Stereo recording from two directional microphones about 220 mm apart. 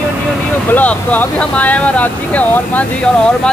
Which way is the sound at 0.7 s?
5° left (ahead or behind).